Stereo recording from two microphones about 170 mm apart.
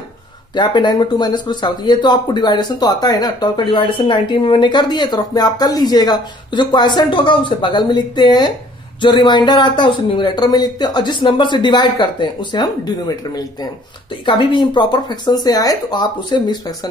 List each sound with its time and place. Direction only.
0.6 s speech: 25° left (ahead or behind)